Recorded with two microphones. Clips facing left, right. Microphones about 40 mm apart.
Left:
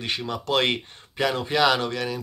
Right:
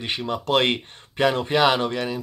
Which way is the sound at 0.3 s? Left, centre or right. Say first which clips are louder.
Right 3 dB; right.